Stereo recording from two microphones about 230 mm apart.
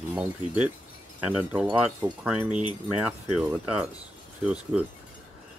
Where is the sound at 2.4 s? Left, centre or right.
Right.